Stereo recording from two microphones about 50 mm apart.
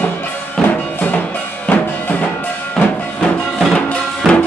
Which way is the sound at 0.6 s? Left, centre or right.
Left.